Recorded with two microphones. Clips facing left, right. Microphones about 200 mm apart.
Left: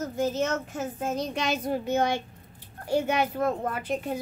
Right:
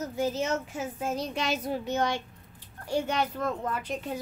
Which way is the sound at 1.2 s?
45° left (ahead or behind).